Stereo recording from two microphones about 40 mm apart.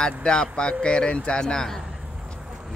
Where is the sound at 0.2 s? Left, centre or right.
Left.